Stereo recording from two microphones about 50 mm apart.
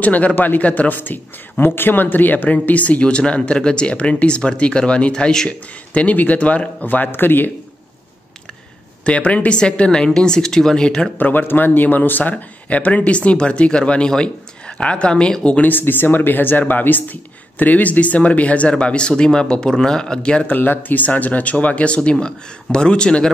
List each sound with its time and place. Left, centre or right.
0.0 s speech: left
0.9 s speech: left; by 5.6 s centre
5.9 s speech: left
9.0 s speech: left
11.1 s speech: left; by 15.3 s centre
15.6 s speech: left; by 20.4 s centre
20.4 s speech: left; by 23.3 s centre